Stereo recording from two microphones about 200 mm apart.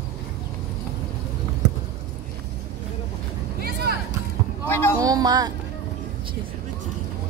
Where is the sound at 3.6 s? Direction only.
50° right (ahead or behind).